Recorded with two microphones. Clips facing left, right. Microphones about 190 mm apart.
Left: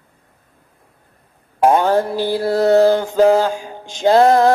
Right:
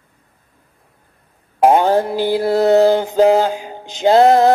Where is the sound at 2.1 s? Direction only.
15° right (ahead or behind).